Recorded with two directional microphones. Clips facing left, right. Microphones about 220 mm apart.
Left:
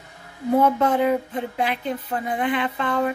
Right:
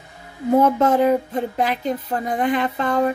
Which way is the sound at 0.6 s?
45° right (ahead or behind).